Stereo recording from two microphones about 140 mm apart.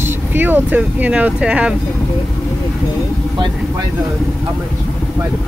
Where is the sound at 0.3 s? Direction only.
15° right (ahead or behind).